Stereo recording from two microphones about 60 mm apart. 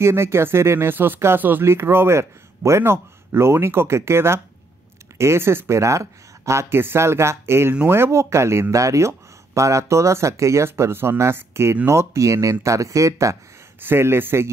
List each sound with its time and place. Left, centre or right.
0.0 s speech: right
6.8 s speech: right
13.7 s speech: right